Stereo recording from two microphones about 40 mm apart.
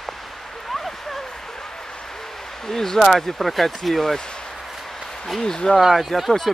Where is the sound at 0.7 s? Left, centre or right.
Centre.